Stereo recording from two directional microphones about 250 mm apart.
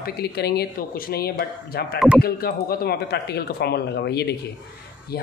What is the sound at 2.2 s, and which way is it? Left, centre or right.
Speech, left.